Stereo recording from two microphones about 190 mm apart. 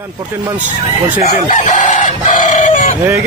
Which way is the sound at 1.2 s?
40° left (ahead or behind).